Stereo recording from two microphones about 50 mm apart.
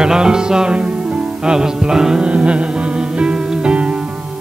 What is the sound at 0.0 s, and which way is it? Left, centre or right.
Music, centre.